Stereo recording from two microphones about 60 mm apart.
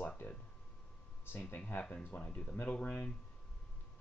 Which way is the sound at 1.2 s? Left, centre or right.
Left.